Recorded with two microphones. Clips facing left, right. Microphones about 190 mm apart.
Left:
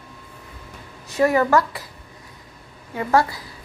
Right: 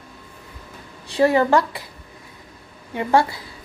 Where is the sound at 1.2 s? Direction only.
30° right (ahead or behind).